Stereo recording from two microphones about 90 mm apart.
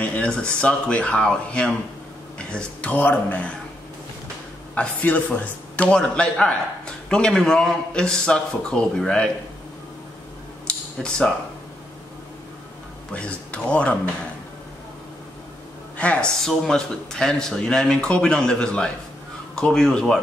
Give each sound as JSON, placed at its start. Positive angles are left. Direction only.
{"t": 0.0, "sound": "speech", "side_deg": 15}
{"t": 4.7, "sound": "speech", "side_deg": 15}
{"t": 11.0, "sound": "speech", "side_deg": 10}
{"t": 13.1, "sound": "speech", "side_deg": 15}
{"t": 16.0, "sound": "speech", "side_deg": 10}